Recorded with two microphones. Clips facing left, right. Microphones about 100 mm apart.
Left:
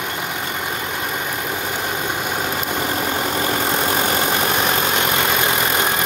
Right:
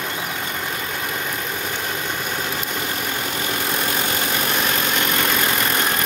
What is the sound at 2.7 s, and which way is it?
Vehicle, 30° left (ahead or behind).